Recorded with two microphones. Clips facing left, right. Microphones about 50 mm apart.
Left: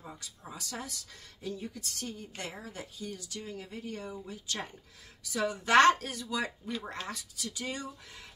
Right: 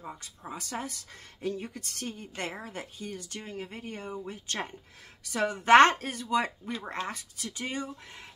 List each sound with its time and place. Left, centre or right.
0.2 s speech: right